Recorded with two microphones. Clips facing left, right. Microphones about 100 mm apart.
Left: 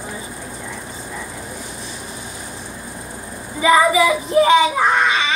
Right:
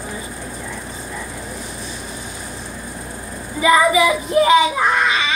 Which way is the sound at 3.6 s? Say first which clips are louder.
Even; 30° left (ahead or behind).